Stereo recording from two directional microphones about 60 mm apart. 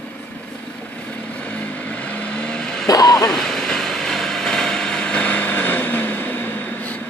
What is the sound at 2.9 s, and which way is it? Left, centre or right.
Music, left.